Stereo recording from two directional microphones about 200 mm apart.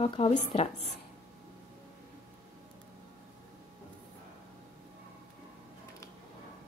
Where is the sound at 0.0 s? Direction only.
30° left (ahead or behind).